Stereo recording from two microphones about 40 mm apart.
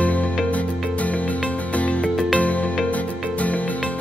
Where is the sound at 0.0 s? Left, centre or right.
Left.